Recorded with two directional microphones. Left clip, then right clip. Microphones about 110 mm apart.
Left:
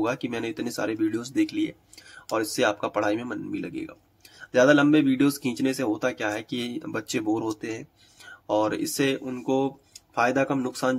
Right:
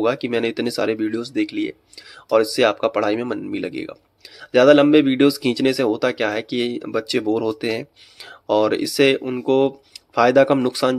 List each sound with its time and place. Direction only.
0.0 s speech: 10° right (ahead or behind)
1.1 s speech: centre (ahead or behind)
2.2 s speech: 20° right (ahead or behind)
3.5 s speech: 25° right (ahead or behind)
6.6 s speech: 5° right (ahead or behind)
7.4 s speech: 35° right (ahead or behind)
8.5 s speech: 20° right (ahead or behind); by 10.7 s 35° right (ahead or behind)
10.7 s speech: 20° right (ahead or behind)